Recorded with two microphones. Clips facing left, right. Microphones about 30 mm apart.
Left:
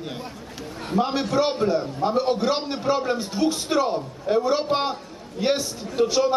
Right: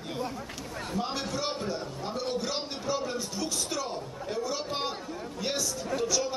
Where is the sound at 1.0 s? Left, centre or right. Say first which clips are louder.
Left 12 dB; left.